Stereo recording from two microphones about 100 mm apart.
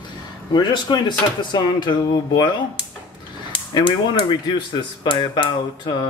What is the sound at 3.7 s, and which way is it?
Speech, 55° left (ahead or behind).